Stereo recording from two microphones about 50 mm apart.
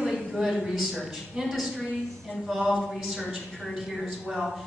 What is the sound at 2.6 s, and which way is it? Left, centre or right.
Speech, centre.